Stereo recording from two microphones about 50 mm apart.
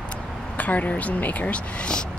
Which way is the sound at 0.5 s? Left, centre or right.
Left.